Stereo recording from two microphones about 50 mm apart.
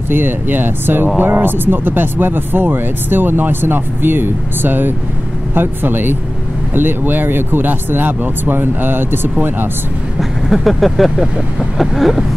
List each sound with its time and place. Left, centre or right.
0.1 s speech: right
10.5 s speech: centre